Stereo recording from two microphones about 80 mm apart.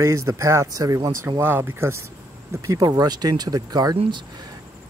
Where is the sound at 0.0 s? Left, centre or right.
Right.